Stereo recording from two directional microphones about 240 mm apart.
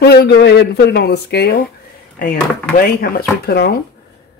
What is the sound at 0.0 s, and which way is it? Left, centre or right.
Speech, left.